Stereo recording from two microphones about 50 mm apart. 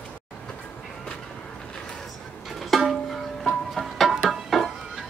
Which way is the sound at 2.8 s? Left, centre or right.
Centre.